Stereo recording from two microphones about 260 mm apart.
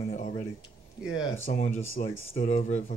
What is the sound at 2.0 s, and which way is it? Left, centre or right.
Speech, left.